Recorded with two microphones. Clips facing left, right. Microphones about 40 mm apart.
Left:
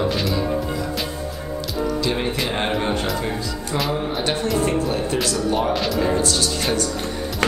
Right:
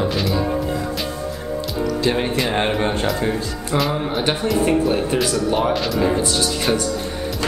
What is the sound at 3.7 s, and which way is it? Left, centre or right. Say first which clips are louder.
Speech: right 3 dB; right.